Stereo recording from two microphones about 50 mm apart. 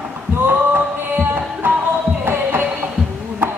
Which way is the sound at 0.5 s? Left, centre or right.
Right.